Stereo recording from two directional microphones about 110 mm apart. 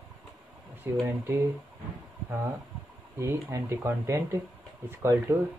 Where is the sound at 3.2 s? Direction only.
25° right (ahead or behind).